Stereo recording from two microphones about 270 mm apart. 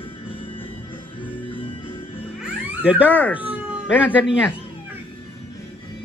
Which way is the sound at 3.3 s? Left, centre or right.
Centre.